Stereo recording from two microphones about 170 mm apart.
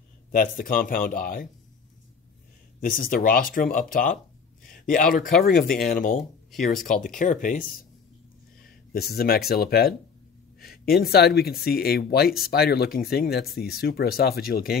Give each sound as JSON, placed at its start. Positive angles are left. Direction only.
{"t": 0.4, "sound": "speech", "side_deg": 55}
{"t": 2.8, "sound": "speech", "side_deg": 55}
{"t": 8.9, "sound": "speech", "side_deg": 65}
{"t": 11.0, "sound": "speech", "side_deg": 70}